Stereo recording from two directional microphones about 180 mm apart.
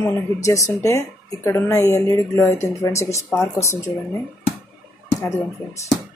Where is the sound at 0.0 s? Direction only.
15° left (ahead or behind).